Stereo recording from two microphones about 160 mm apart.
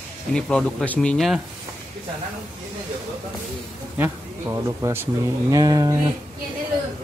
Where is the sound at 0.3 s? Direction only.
5° left (ahead or behind).